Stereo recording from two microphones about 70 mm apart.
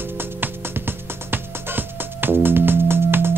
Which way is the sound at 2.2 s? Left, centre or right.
Right.